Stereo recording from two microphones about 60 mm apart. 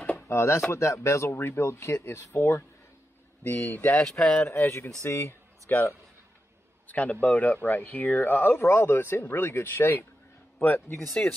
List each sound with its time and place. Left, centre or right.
0.3 s speech: left
3.6 s speech: left
3.9 s speech: centre
4.5 s speech: left
6.9 s speech: left